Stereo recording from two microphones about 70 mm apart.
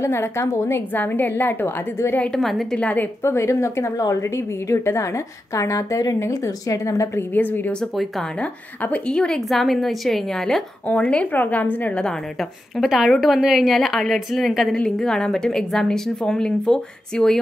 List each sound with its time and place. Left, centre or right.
0.0 s a woman's voice: left
0.9 s a woman's voice: left
2.3 s a woman's voice: centre
2.8 s a woman's voice: left
3.2 s a woman's voice: left
7.3 s a woman's voice: left
7.8 s a woman's voice: centre
8.4 s a woman's voice: centre
9.1 s a woman's voice: centre
10.9 s a woman's voice: centre
12.0 s a woman's voice: centre
14.8 s speech: centre